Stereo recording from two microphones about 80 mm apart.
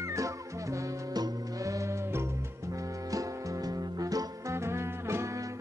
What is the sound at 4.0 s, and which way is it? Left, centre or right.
Music, right.